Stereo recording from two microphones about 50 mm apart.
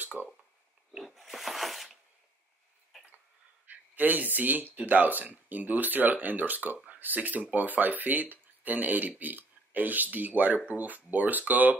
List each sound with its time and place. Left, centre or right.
0.2 s speech: right
1.0 s a sound: centre
3.6 s speech: right